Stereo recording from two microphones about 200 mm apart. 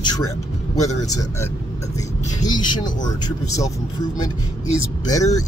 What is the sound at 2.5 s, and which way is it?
Speech, 20° left (ahead or behind).